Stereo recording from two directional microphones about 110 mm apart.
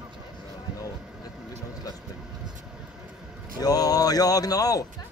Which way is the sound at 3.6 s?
35° left (ahead or behind).